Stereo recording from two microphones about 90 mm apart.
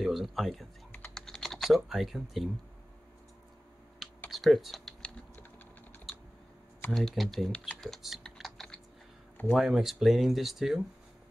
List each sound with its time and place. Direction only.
0.0 s speech: centre (ahead or behind)
0.9 s typing: 5° left (ahead or behind)
1.9 s speech: centre (ahead or behind)
4.3 s speech: centre (ahead or behind)
6.9 s speech: centre (ahead or behind)
8.4 s typing: centre (ahead or behind)
9.5 s speech: 5° right (ahead or behind)